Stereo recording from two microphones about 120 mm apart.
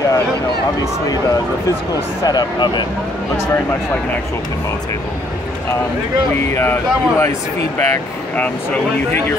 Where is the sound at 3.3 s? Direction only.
20° left (ahead or behind).